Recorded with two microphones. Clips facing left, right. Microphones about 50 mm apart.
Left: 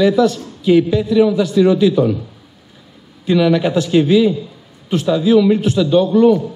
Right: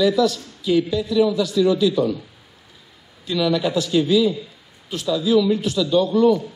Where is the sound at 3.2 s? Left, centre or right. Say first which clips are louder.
Left 7 dB; left.